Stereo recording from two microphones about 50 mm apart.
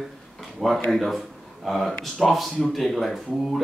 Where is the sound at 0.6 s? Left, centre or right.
Centre.